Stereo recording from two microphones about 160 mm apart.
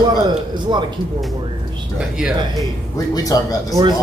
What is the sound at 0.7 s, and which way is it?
Speech, 30° right (ahead or behind).